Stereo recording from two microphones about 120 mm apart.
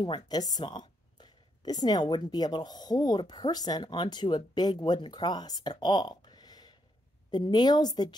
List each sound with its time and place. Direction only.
0.0 s a woman's voice: 35° left (ahead or behind)